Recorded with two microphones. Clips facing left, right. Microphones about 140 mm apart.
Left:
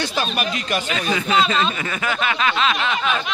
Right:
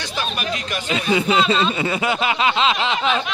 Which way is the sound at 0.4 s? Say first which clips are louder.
Left 3 dB; 65° left (ahead or behind).